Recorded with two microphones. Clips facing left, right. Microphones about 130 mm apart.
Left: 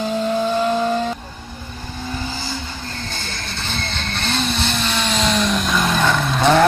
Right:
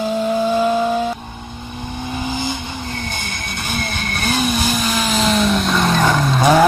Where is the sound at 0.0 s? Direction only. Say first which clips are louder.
Right 2 dB; 5° right (ahead or behind).